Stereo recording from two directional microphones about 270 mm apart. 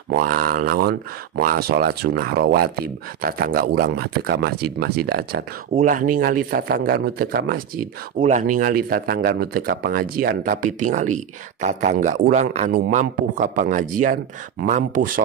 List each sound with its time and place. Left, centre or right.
0.1 s speech: right